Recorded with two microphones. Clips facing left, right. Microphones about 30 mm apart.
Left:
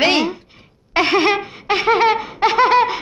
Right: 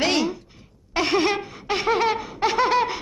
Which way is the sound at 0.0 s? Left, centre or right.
Left.